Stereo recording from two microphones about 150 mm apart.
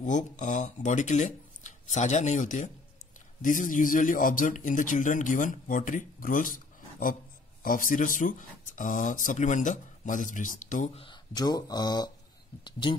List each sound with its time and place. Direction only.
0.0 s speech: 55° left (ahead or behind)
11.0 s speech: 30° left (ahead or behind)